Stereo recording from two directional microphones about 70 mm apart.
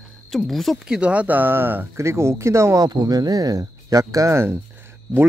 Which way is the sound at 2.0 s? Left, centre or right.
Right.